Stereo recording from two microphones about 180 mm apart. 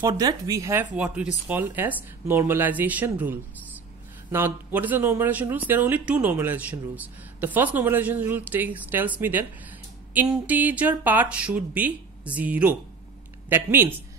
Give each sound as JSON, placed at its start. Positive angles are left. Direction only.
{"t": 0.1, "sound": "speech", "side_deg": -25}
{"t": 0.9, "sound": "speech", "side_deg": -5}